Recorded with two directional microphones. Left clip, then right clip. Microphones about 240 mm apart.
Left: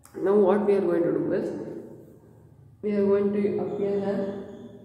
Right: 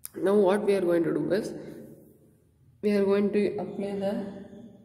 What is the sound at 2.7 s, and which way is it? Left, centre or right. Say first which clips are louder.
Speech: left 1 dB; right.